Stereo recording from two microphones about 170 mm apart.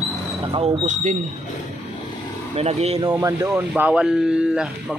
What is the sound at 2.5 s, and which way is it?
Speech, 40° right (ahead or behind).